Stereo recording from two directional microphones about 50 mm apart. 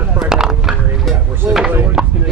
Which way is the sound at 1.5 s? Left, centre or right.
Right.